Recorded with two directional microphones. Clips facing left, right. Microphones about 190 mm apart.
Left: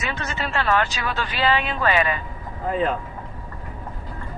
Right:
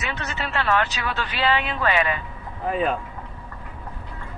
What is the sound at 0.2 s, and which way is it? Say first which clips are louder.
Speech: left 1 dB; 40° left (ahead or behind).